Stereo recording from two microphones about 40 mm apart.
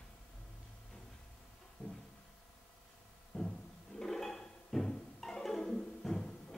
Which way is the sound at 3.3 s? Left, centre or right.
Left.